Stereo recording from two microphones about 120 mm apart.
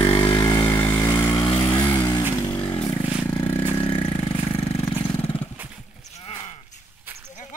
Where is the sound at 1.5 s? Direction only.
40° left (ahead or behind).